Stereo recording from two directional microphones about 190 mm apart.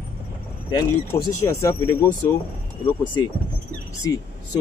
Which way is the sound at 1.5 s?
15° left (ahead or behind).